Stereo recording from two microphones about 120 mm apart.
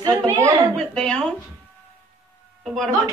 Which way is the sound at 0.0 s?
30° right (ahead or behind).